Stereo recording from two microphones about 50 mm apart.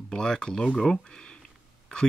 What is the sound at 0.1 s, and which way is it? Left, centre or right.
Speech, centre.